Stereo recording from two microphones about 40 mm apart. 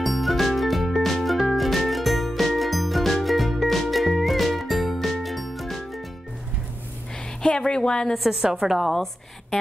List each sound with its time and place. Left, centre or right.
0.0 s music: centre
7.4 s a woman's voice: left
8.2 s a woman's voice: centre